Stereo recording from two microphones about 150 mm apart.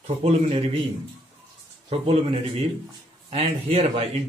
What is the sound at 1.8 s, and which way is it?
Speech, 40° right (ahead or behind).